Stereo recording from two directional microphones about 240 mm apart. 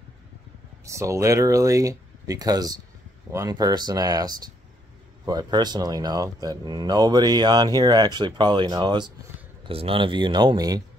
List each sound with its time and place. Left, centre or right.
0.8 s speech: centre